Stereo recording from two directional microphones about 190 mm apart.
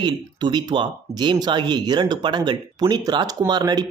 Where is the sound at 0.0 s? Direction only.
25° right (ahead or behind).